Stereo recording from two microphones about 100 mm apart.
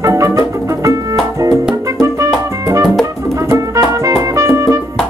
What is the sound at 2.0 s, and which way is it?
Music, 30° right (ahead or behind).